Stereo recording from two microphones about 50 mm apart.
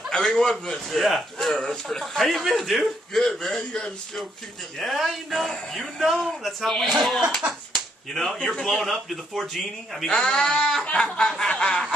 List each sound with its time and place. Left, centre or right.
0.1 s a man's voice: centre
4.7 s a man's voice: centre
10.1 s a man's voice: centre